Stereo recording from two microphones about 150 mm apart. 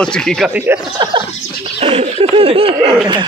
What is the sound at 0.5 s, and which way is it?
Speech, 10° right (ahead or behind).